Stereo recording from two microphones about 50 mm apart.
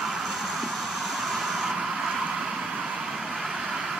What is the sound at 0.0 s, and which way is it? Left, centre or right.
Vehicle, centre.